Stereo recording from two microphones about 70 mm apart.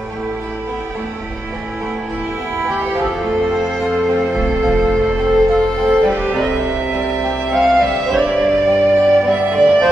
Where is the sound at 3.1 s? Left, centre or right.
Centre.